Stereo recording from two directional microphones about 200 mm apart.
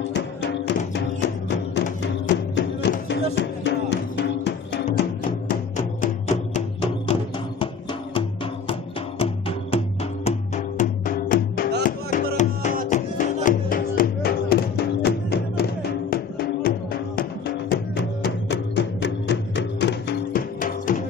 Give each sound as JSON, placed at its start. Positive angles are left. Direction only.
{"t": 0.1, "sound": "music", "side_deg": 60}
{"t": 5.9, "sound": "music", "side_deg": 35}